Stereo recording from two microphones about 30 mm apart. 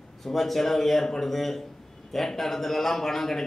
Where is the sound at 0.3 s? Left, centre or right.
Centre.